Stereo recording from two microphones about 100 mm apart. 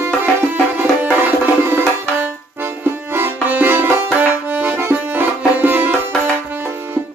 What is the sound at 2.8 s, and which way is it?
Music, 20° right (ahead or behind).